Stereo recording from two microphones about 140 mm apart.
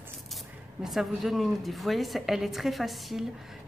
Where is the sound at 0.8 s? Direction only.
Centre (ahead or behind).